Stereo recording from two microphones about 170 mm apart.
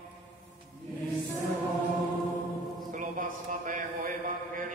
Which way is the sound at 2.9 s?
50° right (ahead or behind).